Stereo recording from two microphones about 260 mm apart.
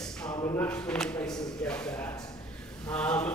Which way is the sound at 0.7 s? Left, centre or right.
Centre.